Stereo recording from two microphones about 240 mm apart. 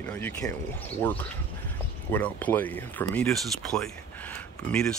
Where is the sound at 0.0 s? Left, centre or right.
Centre.